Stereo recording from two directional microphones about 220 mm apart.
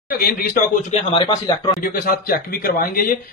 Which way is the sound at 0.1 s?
45° left (ahead or behind).